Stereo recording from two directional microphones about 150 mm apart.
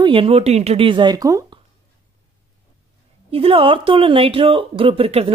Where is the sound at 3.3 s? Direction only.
40° right (ahead or behind).